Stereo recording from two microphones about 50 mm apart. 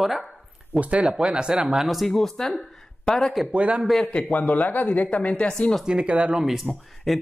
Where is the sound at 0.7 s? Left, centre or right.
Right.